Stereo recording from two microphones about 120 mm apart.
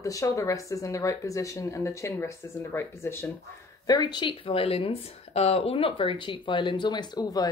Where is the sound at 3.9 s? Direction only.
40° left (ahead or behind).